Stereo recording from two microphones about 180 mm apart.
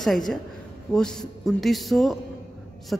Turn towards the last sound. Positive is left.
turn(degrees=5)  # may be behind; listen again after turning